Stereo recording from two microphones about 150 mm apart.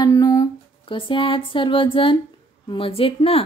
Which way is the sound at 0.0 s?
25° left (ahead or behind).